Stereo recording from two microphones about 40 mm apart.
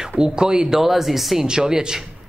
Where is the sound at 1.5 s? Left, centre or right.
Centre.